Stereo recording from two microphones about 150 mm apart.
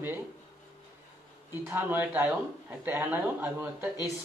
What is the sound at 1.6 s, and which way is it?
A man's voice, 10° right (ahead or behind).